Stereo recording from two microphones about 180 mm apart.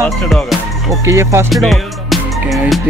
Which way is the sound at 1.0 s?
15° right (ahead or behind).